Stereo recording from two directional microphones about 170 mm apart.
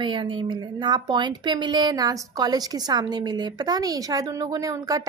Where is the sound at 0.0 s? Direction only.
30° right (ahead or behind).